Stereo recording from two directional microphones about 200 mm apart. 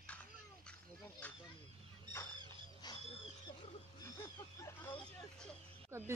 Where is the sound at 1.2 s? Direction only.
10° left (ahead or behind).